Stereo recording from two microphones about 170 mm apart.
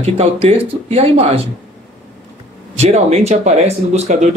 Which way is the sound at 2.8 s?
40° right (ahead or behind).